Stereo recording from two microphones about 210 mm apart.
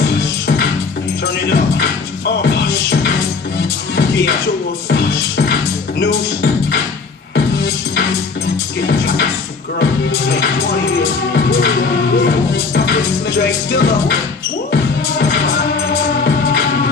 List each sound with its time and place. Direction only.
1.4 s music: 50° left (ahead or behind)
8.8 s music: 55° left (ahead or behind)